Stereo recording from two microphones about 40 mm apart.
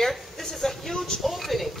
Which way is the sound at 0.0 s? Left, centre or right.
Centre.